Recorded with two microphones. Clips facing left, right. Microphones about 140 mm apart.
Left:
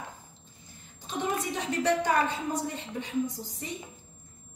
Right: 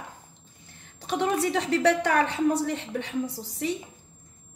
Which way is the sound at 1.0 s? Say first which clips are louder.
Right 6 dB; 75° right (ahead or behind).